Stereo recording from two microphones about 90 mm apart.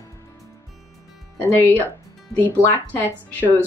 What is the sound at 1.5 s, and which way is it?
Speech, 25° left (ahead or behind).